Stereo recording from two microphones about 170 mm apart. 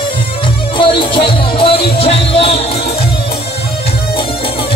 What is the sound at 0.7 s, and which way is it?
Music, 30° left (ahead or behind).